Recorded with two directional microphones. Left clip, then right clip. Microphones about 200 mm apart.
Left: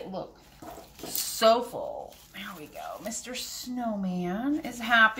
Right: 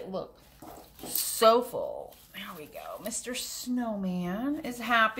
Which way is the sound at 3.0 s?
45° right (ahead or behind).